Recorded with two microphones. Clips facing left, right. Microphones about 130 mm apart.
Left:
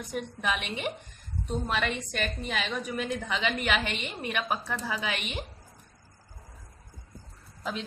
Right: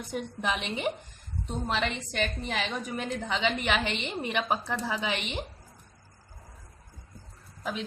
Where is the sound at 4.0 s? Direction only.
25° right (ahead or behind).